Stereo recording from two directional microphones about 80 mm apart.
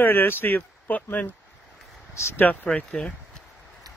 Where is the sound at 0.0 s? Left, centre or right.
Left.